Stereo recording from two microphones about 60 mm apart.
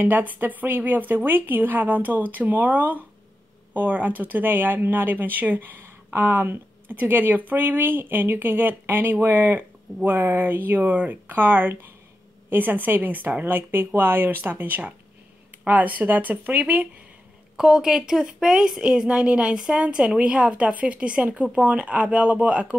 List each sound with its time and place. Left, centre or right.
0.0 s a woman's voice: right
17.6 s a woman's voice: centre